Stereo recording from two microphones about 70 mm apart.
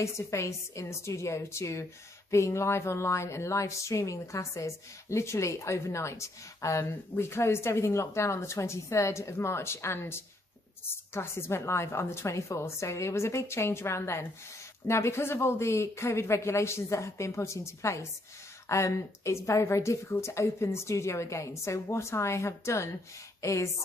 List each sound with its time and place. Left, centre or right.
0.0 s a woman's voice: left